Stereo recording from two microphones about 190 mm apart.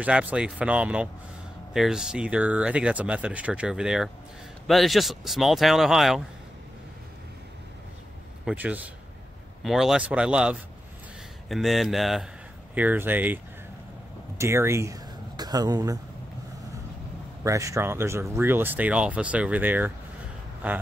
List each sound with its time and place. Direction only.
0.0 s speech: 5° right (ahead or behind)
8.5 s speech: 5° right (ahead or behind)
14.4 s speech: 15° right (ahead or behind)
17.4 s speech: 15° right (ahead or behind)